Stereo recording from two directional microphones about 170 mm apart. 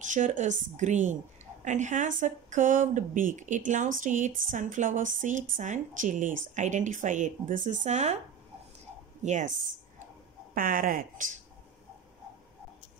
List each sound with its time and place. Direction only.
0.0 s a woman's voice: 50° right (ahead or behind)
9.2 s a woman's voice: 45° right (ahead or behind)
10.5 s speech: 55° right (ahead or behind)